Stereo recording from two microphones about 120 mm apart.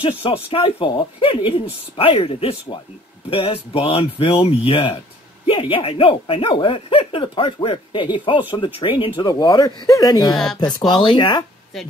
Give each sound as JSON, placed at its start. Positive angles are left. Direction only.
{"t": 0.0, "sound": "speech", "side_deg": 50}
{"t": 10.3, "sound": "speech", "side_deg": 0}
{"t": 10.9, "sound": "speech", "side_deg": 40}